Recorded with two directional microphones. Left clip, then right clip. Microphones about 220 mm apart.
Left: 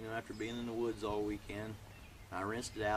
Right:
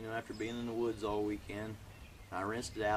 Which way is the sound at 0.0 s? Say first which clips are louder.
Right 2 dB; 5° right (ahead or behind).